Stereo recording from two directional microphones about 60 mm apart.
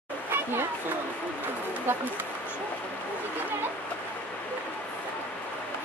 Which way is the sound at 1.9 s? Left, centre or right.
Right.